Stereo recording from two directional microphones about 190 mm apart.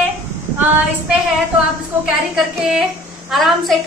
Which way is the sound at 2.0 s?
5° right (ahead or behind).